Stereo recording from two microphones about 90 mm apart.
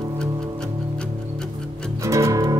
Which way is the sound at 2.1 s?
35° right (ahead or behind).